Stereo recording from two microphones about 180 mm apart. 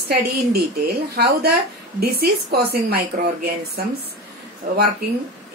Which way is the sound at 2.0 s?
60° right (ahead or behind).